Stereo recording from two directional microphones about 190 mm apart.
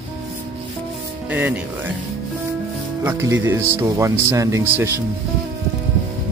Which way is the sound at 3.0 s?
15° right (ahead or behind).